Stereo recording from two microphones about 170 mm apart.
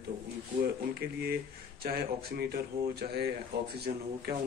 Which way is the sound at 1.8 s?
65° right (ahead or behind).